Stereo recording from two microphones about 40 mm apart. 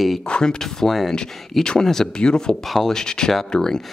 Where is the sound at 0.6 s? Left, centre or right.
Centre.